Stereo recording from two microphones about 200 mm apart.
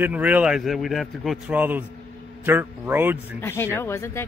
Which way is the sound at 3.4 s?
10° left (ahead or behind).